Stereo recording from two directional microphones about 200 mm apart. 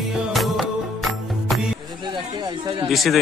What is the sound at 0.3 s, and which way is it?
Music, centre (ahead or behind).